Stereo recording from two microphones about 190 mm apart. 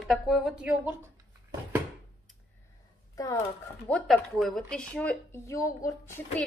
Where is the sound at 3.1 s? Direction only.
20° left (ahead or behind).